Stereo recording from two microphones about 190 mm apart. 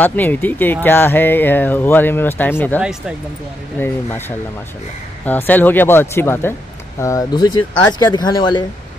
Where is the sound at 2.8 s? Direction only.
5° right (ahead or behind).